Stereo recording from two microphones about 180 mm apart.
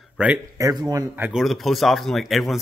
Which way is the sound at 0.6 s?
20° right (ahead or behind).